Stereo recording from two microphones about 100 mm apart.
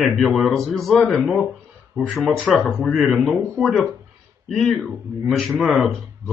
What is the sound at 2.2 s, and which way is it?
Speech, 5° left (ahead or behind).